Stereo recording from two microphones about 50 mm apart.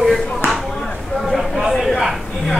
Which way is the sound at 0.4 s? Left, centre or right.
Left.